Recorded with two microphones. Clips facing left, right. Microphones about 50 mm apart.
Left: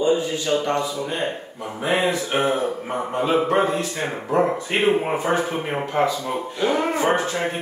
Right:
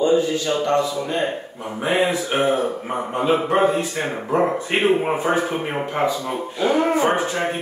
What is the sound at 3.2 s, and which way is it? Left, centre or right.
A man's voice, centre.